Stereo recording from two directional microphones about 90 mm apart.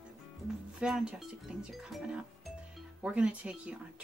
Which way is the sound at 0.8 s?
10° right (ahead or behind).